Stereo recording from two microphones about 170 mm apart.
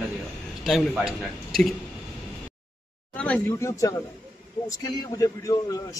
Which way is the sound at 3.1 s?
5° left (ahead or behind).